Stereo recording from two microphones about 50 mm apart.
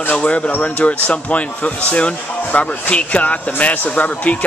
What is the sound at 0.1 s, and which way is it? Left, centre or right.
Speech, left.